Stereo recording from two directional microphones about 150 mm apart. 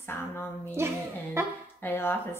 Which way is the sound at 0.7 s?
15° right (ahead or behind).